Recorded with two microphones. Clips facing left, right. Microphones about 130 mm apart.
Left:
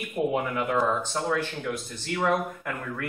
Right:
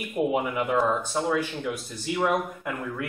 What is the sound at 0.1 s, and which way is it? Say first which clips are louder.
Speech: right 1 dB; 10° right (ahead or behind).